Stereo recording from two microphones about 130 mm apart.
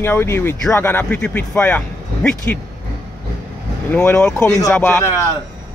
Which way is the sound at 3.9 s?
15° left (ahead or behind).